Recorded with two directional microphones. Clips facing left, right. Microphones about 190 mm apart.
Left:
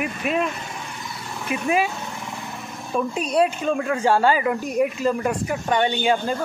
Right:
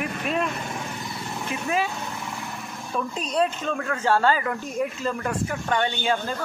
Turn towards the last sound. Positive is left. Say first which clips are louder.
# left 4 dB
turn(degrees=15)  # may be behind; listen again after turning